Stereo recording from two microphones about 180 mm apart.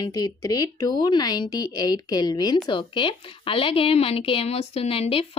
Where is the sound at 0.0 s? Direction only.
20° left (ahead or behind).